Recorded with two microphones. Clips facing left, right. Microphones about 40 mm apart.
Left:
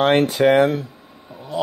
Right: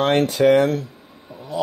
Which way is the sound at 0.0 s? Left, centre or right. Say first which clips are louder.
Left 1 dB; centre.